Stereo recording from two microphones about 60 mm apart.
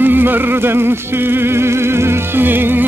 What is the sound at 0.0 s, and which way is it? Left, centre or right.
Music, right.